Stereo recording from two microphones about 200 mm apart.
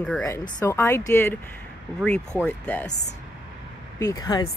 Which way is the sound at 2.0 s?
5° right (ahead or behind).